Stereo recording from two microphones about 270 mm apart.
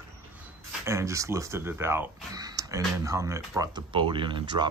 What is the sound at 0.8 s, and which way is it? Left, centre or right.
Speech, centre.